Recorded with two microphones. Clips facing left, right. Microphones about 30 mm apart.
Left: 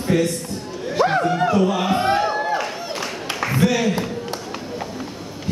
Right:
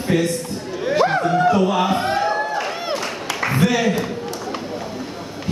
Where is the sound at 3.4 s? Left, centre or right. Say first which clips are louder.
Right 1 dB; centre.